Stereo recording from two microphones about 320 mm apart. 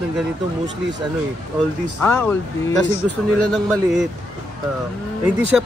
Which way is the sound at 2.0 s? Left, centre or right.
Centre.